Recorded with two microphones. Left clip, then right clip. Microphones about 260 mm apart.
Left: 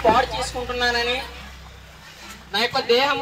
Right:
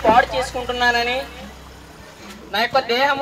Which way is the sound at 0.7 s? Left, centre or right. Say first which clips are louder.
Right 4 dB; centre.